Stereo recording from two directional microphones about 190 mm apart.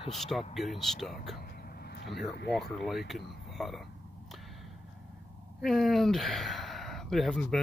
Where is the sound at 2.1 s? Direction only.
60° left (ahead or behind).